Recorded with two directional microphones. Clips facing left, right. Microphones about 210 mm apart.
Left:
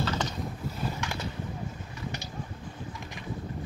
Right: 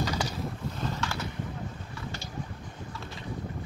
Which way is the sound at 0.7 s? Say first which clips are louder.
Even; 10° left (ahead or behind).